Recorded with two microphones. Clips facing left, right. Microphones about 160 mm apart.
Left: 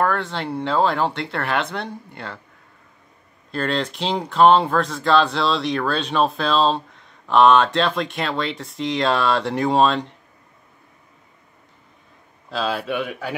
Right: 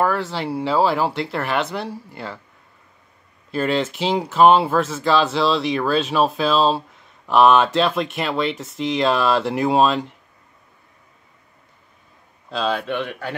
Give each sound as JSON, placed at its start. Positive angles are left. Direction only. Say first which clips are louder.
{"t": 0.0, "sound": "speech", "louder": "right 1 dB", "side_deg": -5}
{"t": 3.5, "sound": "speech", "louder": "right 3 dB", "side_deg": -5}
{"t": 12.4, "sound": "speech", "louder": "right 1 dB", "side_deg": 0}